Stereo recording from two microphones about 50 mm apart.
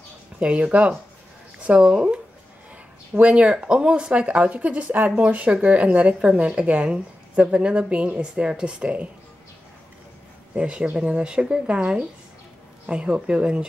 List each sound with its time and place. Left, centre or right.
0.4 s speech: right
3.2 s speech: right
10.5 s speech: right